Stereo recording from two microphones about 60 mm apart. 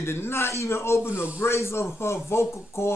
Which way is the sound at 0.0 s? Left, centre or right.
Left.